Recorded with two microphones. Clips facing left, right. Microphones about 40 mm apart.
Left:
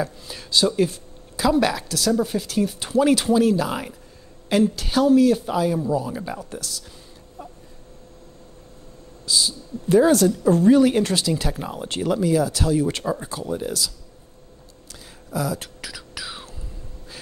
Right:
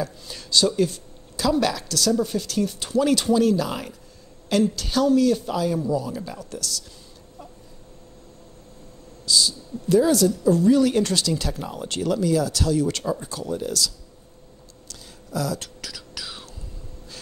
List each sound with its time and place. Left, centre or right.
0.0 s a woman's voice: centre
9.2 s speech: left
9.9 s a woman's voice: left
10.8 s a woman's voice: left
14.9 s whispering: centre